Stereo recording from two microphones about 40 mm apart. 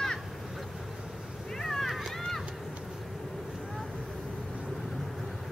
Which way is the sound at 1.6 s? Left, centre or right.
Centre.